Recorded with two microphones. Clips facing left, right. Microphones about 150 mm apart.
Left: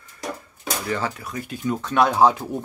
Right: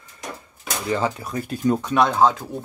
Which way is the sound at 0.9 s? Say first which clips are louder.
Right 5 dB; 20° right (ahead or behind).